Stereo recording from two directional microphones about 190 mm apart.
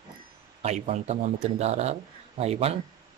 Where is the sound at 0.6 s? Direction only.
35° right (ahead or behind).